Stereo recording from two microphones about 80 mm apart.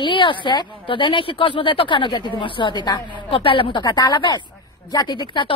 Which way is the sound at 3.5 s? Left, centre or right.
Left.